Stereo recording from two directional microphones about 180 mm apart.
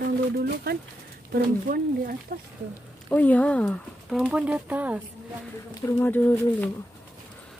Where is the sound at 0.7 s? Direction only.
55° right (ahead or behind).